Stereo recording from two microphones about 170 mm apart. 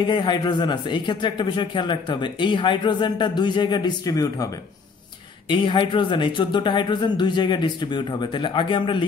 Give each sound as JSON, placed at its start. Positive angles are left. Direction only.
{"t": 0.0, "sound": "a man's voice", "side_deg": 25}
{"t": 5.5, "sound": "a man's voice", "side_deg": 30}